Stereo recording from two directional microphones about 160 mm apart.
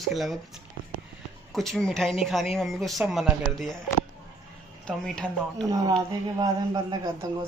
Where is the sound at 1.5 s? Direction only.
Centre (ahead or behind).